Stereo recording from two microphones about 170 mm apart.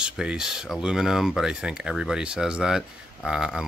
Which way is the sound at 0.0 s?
5° right (ahead or behind).